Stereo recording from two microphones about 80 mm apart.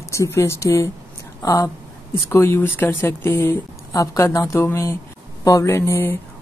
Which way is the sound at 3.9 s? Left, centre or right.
Left.